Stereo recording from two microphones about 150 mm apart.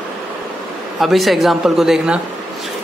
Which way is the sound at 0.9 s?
Centre (ahead or behind).